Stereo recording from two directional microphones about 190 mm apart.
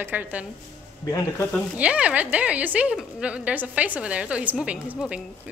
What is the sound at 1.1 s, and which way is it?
Speech, 15° left (ahead or behind).